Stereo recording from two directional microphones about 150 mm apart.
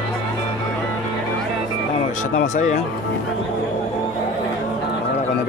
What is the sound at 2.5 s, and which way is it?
Speech, 55° left (ahead or behind).